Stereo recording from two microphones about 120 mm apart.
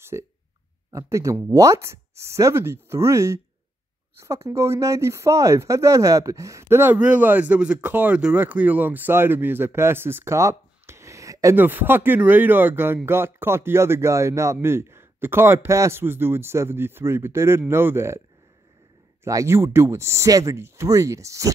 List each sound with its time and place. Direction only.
0.1 s speech: 25° right (ahead or behind)
19.2 s speech: 25° right (ahead or behind)